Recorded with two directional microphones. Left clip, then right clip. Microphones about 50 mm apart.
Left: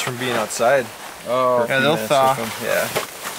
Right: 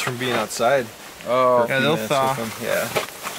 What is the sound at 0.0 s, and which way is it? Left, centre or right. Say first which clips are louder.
Speech: left 1 dB; centre.